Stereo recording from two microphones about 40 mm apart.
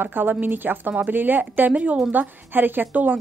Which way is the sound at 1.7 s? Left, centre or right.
Right.